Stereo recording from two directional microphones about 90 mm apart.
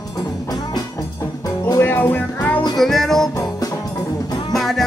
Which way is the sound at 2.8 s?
5° left (ahead or behind).